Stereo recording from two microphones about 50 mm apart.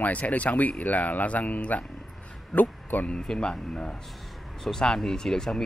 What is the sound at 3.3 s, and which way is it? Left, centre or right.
Speech, centre.